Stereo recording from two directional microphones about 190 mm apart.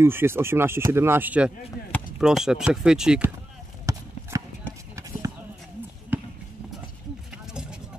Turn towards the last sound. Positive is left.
turn(degrees=-10)  # may be behind; listen again after turning